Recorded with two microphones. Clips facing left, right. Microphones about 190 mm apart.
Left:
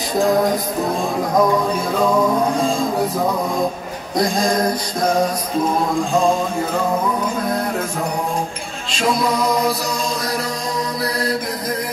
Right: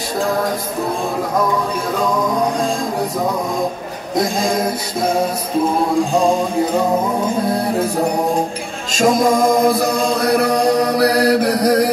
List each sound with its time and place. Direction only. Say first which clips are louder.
4.2 s music: even; 5° right (ahead or behind)
8.9 s chant: right 5 dB; 45° right (ahead or behind); by 11.9 s 75° right (ahead or behind)